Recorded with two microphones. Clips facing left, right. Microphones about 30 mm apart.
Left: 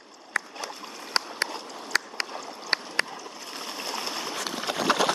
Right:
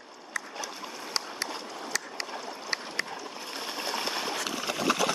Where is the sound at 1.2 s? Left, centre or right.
Left.